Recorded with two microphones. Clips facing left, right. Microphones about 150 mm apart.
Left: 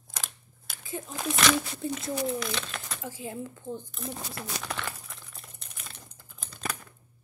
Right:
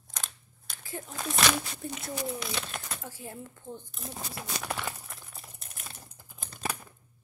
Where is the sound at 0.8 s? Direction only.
15° left (ahead or behind).